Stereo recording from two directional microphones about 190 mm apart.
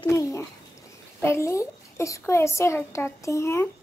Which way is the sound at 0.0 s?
15° left (ahead or behind).